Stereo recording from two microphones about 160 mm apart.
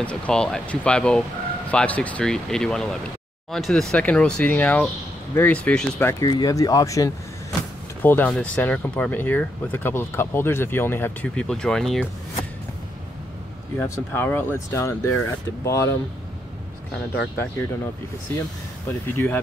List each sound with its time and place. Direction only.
0.0 s speech: 5° left (ahead or behind)
13.7 s speech: 15° left (ahead or behind)
18.9 s speech: 15° left (ahead or behind)